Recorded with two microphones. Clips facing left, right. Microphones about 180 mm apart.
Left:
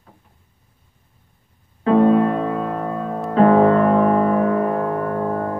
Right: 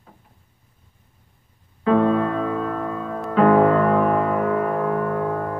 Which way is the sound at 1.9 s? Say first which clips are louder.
Left 4 dB; 30° left (ahead or behind).